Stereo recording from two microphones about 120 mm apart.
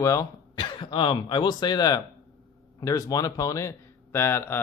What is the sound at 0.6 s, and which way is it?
Speech, 40° left (ahead or behind).